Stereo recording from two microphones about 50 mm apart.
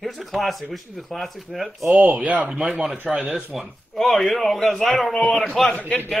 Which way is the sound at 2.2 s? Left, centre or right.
Right.